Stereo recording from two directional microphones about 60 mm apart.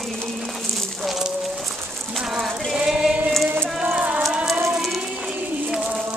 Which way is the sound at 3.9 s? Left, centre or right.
Right.